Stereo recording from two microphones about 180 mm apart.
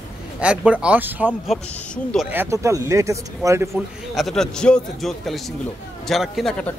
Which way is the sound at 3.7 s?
Centre (ahead or behind).